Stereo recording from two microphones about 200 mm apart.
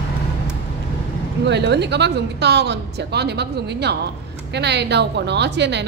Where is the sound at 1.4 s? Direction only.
60° right (ahead or behind).